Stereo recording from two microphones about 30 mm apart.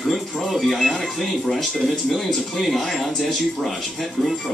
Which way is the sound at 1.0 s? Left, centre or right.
Centre.